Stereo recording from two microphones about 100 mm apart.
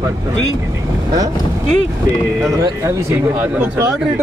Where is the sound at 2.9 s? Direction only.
25° right (ahead or behind).